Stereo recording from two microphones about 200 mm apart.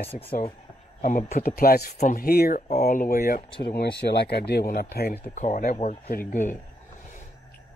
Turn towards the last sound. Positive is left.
turn(degrees=40)  # may be behind; listen again after turning